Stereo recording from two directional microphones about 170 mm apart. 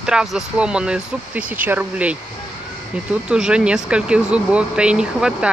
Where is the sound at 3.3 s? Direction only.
5° right (ahead or behind).